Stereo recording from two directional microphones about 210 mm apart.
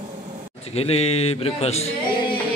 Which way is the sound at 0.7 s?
30° left (ahead or behind).